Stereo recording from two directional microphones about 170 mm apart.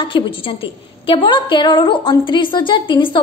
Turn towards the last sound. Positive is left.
turn(degrees=30)  # may be behind; listen again after turning